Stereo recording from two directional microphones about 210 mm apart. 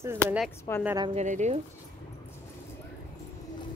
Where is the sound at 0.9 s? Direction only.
20° right (ahead or behind).